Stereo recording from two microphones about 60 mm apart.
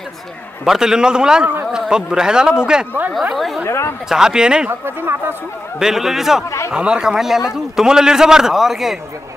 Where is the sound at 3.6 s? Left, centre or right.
Left.